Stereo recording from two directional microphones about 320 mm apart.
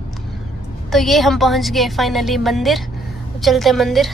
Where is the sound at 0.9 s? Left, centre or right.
Centre.